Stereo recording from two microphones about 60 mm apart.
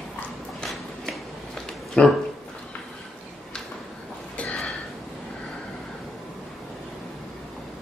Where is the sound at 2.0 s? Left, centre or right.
Left.